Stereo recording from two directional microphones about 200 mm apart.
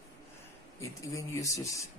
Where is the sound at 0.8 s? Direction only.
15° left (ahead or behind).